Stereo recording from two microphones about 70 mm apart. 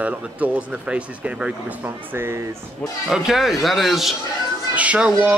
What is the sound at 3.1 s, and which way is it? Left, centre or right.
Speech, centre.